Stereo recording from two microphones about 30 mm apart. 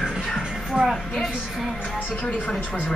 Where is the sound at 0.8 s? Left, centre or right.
Right.